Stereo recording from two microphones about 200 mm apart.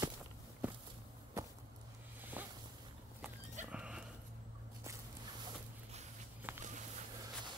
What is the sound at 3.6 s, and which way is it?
Dog, 5° right (ahead or behind).